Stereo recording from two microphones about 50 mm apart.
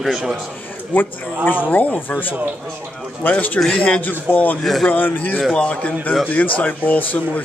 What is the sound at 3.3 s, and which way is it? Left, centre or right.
Speech, left.